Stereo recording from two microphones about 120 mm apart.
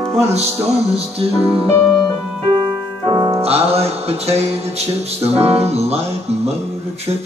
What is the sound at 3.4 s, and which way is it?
Music, 60° right (ahead or behind).